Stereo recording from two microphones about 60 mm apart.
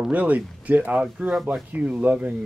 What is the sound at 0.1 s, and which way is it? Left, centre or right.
Speech, right.